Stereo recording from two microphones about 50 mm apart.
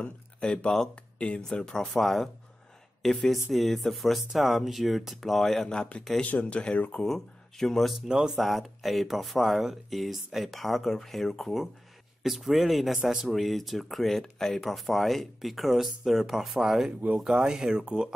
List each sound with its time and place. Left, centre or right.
0.0 s speech: centre
1.6 s speech: centre
5.8 s a man's voice: left
7.1 s speech: centre
8.1 s speech: centre
8.4 s speech: centre